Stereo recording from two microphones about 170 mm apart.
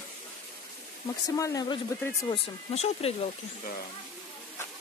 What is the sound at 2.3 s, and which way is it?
Speech, 35° left (ahead or behind).